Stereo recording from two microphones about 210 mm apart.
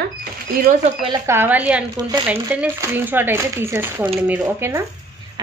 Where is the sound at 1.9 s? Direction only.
20° right (ahead or behind).